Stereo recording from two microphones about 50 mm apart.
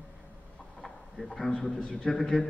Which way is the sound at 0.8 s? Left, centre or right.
Centre.